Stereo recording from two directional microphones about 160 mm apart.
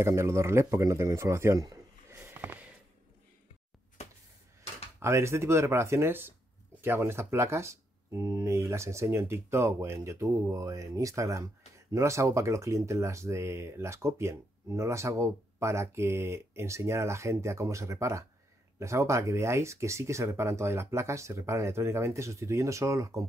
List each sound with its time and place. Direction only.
0.0 s speech: 15° right (ahead or behind)
4.0 s a sound: 45° left (ahead or behind)
5.0 s speech: 15° right (ahead or behind)